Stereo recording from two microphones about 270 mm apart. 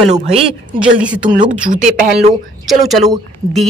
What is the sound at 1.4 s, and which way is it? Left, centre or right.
Speech, right.